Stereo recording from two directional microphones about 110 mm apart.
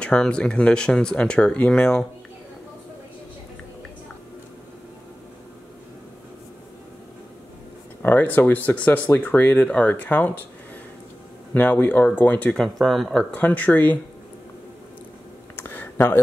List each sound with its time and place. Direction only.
0.0 s speech: 10° left (ahead or behind)
8.0 s speech: 20° left (ahead or behind)
11.5 s speech: 15° left (ahead or behind)
12.6 s speech: centre (ahead or behind); by 13.9 s 15° left (ahead or behind)
15.5 s a sound: 20° left (ahead or behind)